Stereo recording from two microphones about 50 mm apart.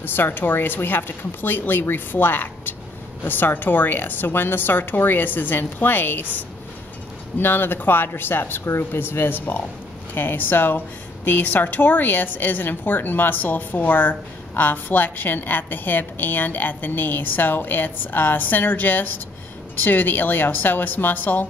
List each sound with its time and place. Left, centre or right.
0.0 s a woman's voice: left